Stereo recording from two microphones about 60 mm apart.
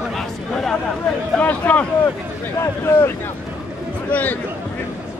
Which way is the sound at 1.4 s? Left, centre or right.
Left.